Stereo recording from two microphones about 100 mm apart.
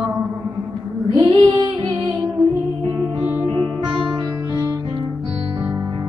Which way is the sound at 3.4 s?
15° left (ahead or behind).